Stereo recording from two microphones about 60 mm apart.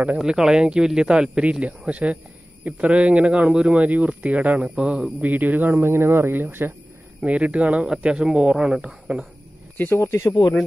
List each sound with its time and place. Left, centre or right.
0.2 s speech: centre
5.2 s speech: right
7.2 s speech: right
9.9 s speech: left